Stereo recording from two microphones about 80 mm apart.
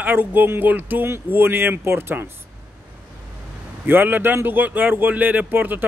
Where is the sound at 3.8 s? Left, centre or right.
Right.